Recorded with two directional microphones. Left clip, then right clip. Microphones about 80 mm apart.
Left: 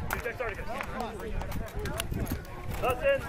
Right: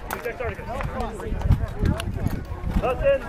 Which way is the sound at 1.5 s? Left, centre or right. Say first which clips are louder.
Right 7 dB; left.